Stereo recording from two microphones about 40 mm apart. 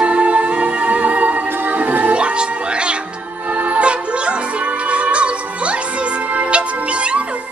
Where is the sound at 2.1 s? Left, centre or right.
Right.